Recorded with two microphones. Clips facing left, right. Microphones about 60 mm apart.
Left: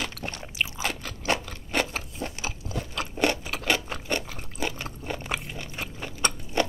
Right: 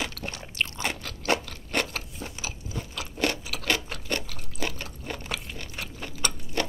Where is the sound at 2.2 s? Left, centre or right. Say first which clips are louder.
Left 3 dB; left.